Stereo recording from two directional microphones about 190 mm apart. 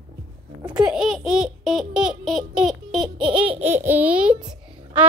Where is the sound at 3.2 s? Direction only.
25° right (ahead or behind).